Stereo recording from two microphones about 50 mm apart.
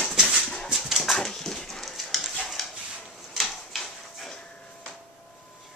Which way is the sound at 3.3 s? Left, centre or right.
Centre.